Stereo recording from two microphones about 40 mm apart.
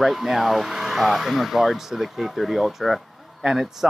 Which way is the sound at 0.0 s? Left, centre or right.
Centre.